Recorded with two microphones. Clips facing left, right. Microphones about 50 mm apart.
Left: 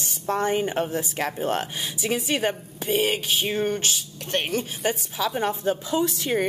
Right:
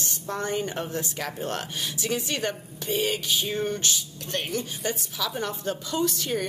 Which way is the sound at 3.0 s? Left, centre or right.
Left.